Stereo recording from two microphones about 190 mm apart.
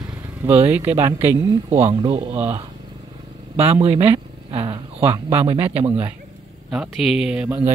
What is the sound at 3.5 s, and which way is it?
Speech, 30° right (ahead or behind).